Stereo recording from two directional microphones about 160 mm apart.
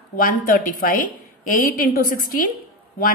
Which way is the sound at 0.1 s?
60° left (ahead or behind).